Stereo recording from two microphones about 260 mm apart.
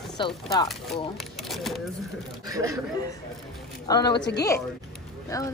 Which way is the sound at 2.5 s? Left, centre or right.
Centre.